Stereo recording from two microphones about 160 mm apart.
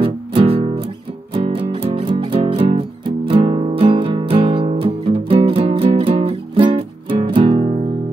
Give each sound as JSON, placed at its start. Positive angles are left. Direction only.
{"t": 0.0, "sound": "music", "side_deg": -35}